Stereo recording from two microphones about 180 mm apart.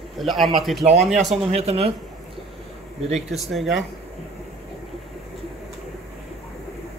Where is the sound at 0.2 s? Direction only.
Centre (ahead or behind).